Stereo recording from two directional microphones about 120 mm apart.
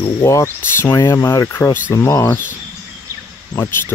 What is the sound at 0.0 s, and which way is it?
Speech, 25° left (ahead or behind).